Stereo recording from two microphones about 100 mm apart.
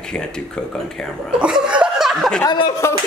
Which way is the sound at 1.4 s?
10° right (ahead or behind).